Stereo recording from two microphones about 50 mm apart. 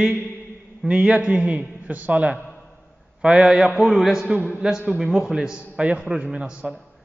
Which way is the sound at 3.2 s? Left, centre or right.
Right.